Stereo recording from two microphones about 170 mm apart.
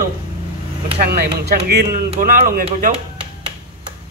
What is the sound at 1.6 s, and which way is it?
Speech, 65° right (ahead or behind).